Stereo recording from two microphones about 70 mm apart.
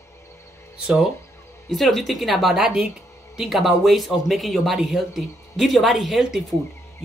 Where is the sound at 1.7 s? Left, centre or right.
Centre.